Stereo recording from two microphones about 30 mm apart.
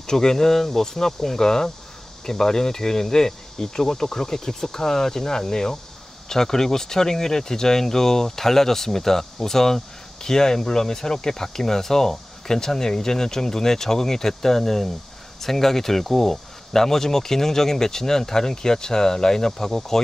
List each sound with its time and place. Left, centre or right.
0.0 s speech: centre